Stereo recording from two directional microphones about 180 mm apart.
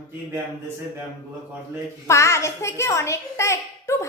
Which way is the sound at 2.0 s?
15° left (ahead or behind).